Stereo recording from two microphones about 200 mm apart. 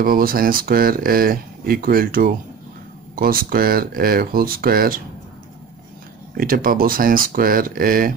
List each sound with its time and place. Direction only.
0.0 s speech: 45° right (ahead or behind)
6.3 s speech: 45° right (ahead or behind)